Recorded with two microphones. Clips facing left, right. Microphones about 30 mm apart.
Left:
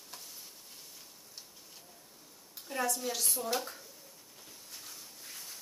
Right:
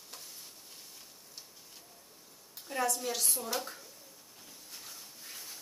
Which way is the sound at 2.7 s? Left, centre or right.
Centre.